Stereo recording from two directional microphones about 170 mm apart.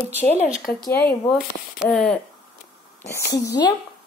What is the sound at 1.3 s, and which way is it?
Speech, centre (ahead or behind).